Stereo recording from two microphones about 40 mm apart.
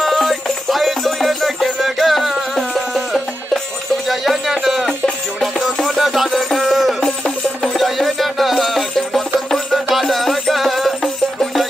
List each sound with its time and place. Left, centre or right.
0.0 s music: centre
7.0 s music: centre
7.7 s music: centre